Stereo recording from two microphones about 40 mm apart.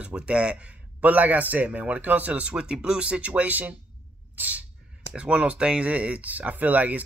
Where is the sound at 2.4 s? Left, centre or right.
Right.